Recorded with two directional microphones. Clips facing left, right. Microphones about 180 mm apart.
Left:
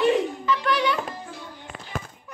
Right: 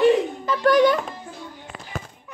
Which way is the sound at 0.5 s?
45° right (ahead or behind).